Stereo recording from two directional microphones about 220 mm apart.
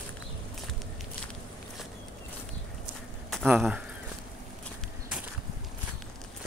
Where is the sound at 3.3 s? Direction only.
Centre (ahead or behind).